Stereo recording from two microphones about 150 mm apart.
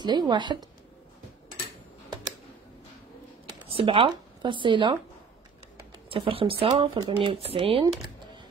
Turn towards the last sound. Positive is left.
turn(degrees=-35)  # may be behind; listen again after turning